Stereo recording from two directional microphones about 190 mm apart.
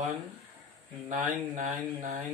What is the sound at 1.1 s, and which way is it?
Speech, 40° right (ahead or behind).